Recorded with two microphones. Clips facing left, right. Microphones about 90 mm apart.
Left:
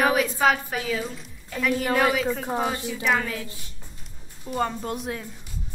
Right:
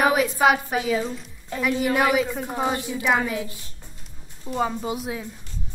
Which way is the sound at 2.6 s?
20° right (ahead or behind).